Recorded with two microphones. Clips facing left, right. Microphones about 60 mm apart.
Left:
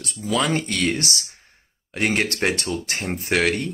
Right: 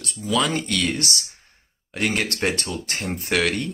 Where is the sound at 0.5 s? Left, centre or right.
Left.